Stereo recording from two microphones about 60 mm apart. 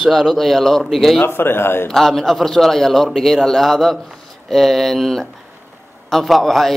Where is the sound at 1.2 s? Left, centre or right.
Left.